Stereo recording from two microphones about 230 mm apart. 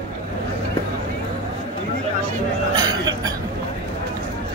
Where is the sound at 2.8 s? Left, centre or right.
Centre.